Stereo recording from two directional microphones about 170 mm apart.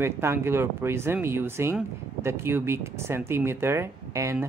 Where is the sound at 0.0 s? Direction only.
15° right (ahead or behind).